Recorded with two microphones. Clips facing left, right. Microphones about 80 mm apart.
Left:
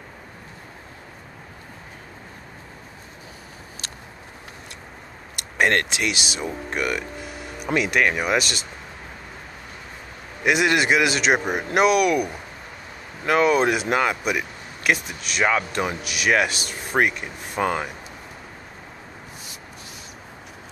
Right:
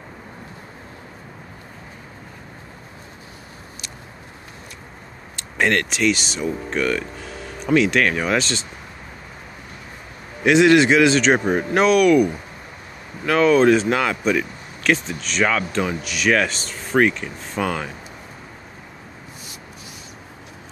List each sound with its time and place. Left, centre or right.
5.6 s speech: left
5.9 s speech: centre
10.4 s speech: centre; by 17.9 s left